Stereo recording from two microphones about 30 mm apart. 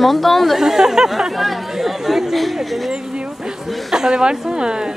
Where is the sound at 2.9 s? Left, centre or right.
Right.